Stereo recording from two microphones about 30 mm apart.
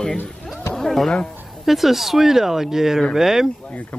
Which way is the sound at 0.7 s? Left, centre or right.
Centre.